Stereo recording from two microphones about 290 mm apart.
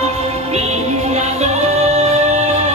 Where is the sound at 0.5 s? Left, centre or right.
Right.